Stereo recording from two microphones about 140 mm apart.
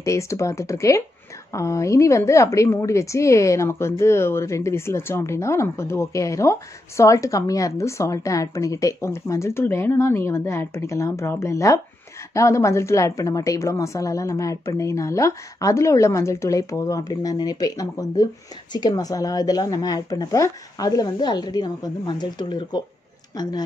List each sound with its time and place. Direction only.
0.0 s a woman's voice: 20° left (ahead or behind)